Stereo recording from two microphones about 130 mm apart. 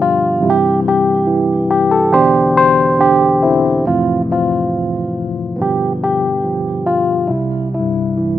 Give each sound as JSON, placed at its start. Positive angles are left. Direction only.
{"t": 0.0, "sound": "music", "side_deg": -20}
{"t": 1.9, "sound": "music", "side_deg": 0}